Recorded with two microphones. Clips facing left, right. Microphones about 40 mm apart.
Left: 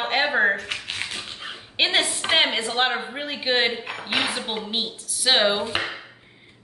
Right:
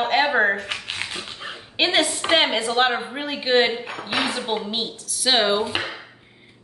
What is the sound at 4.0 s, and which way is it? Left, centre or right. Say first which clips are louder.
Speech: even; centre.